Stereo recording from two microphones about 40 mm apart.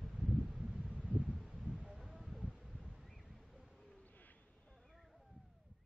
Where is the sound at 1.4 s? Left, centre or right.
Centre.